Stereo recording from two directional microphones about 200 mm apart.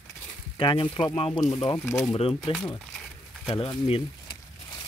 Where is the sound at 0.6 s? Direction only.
25° left (ahead or behind).